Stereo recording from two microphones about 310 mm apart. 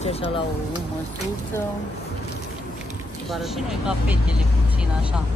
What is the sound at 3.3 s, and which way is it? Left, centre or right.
Speech, centre.